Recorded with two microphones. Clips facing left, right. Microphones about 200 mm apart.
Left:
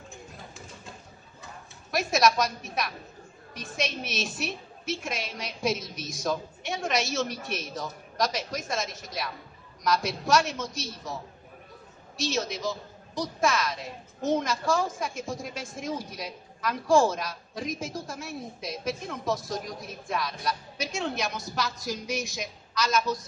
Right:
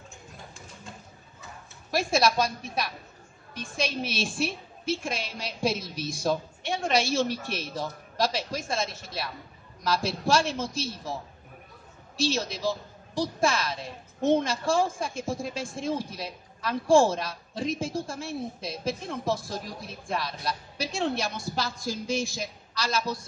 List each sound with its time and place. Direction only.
1.9 s a woman's voice: 30° right (ahead or behind)
12.2 s a woman's voice: 30° right (ahead or behind)